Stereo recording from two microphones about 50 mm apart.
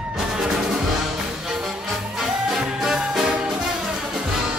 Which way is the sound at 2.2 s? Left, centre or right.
Centre.